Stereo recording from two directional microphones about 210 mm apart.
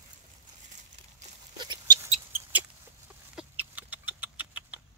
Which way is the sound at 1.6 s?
20° right (ahead or behind).